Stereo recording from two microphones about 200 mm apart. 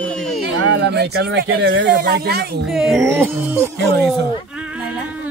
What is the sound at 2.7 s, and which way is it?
Speech, 5° right (ahead or behind).